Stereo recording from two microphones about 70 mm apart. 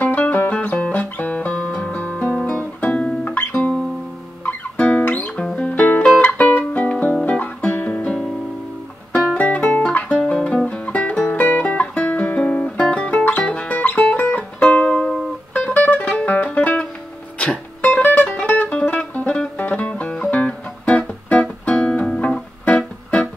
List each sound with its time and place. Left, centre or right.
0.0 s music: left
7.2 s guitar: left
9.1 s music: centre
15.5 s music: left